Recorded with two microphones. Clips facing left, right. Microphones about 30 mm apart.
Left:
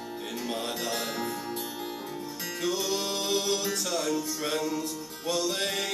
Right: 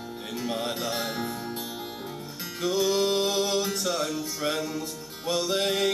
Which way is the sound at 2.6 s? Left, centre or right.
Centre.